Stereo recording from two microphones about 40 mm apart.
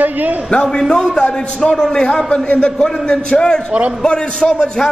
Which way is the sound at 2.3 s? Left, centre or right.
Left.